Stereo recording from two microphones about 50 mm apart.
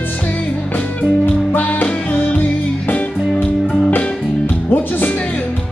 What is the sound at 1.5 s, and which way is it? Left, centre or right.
Music, left.